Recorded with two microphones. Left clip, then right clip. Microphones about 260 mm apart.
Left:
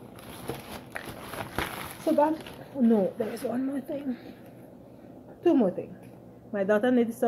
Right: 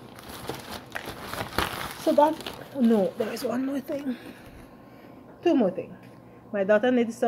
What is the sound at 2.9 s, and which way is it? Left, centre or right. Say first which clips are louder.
Speech: right 2 dB; centre.